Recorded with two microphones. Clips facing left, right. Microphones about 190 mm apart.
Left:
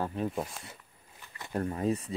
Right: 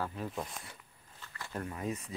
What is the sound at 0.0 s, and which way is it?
Speech, 25° left (ahead or behind).